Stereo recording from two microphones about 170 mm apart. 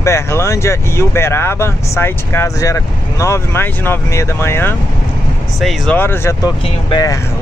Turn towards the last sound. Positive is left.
turn(degrees=25)  # may be behind; listen again after turning